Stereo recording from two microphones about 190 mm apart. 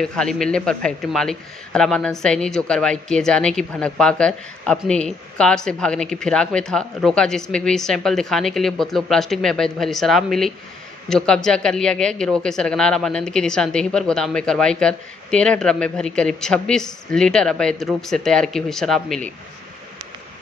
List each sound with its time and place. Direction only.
0.0 s a man's voice: 5° left (ahead or behind)